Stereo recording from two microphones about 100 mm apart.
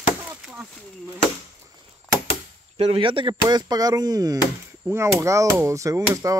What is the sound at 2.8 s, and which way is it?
Speech, 75° right (ahead or behind).